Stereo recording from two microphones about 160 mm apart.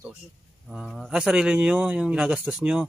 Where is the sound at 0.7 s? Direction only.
5° right (ahead or behind).